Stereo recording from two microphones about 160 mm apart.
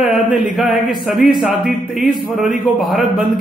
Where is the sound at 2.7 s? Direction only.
Centre (ahead or behind).